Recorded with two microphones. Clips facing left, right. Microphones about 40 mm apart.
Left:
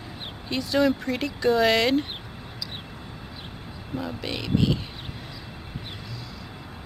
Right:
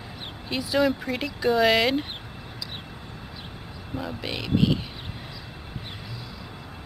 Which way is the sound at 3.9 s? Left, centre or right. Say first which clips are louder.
Left 1 dB; centre.